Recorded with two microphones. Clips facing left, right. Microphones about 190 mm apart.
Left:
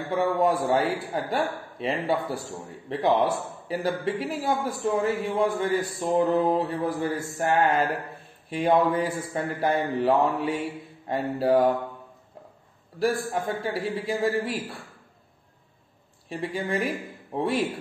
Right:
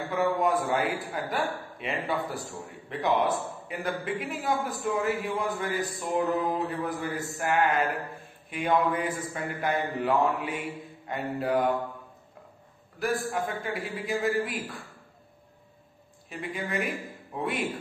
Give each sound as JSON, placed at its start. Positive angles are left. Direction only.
{"t": 0.1, "sound": "a man's voice", "side_deg": 30}
{"t": 13.0, "sound": "a man's voice", "side_deg": 30}
{"t": 16.3, "sound": "speech", "side_deg": 30}